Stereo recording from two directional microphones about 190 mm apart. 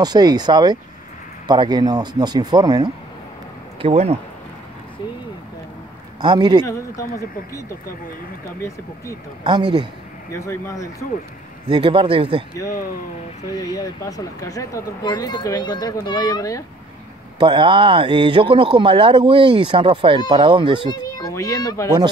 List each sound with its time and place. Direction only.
0.0 s speech: 20° right (ahead or behind)
3.8 s speech: 35° right (ahead or behind)
6.2 s speech: 20° right (ahead or behind)
6.6 s speech: 15° left (ahead or behind)
9.4 s speech: 25° right (ahead or behind)
10.3 s speech: 15° left (ahead or behind)
11.7 s speech: 25° right (ahead or behind)
13.6 s speech: 20° left (ahead or behind)
17.4 s speech: 25° right (ahead or behind)
20.9 s speech: 20° left (ahead or behind)